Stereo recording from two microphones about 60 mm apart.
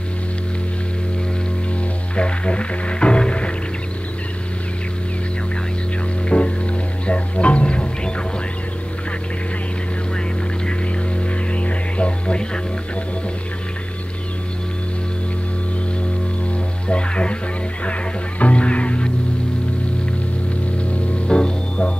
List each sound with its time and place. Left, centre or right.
2.1 s music: centre
6.2 s music: centre
11.5 s music: centre
16.8 s music: centre
18.4 s music: centre
20.9 s music: centre